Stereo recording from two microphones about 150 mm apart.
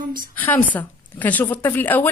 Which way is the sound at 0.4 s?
10° left (ahead or behind).